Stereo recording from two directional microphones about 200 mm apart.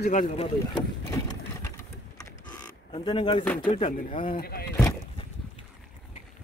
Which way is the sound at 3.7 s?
30° left (ahead or behind).